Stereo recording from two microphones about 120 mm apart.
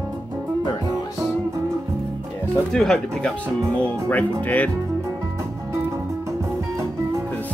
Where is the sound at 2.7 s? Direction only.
5° left (ahead or behind).